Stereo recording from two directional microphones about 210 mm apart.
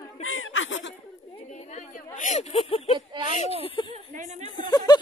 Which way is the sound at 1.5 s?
35° left (ahead or behind).